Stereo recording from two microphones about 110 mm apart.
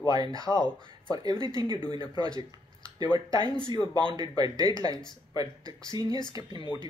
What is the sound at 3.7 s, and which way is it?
Speech, 40° right (ahead or behind).